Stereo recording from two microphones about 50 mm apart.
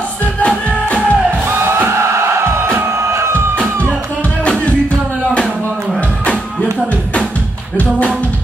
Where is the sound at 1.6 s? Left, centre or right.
Right.